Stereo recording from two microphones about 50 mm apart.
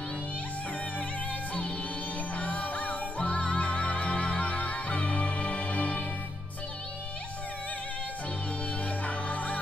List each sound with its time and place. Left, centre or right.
2.3 s music: left
9.0 s music: left